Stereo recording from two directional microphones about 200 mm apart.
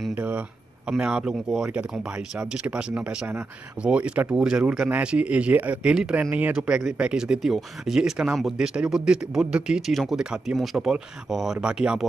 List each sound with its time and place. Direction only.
0.1 s speech: 5° right (ahead or behind)